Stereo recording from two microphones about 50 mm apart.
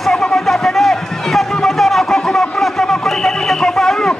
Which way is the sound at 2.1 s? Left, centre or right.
Centre.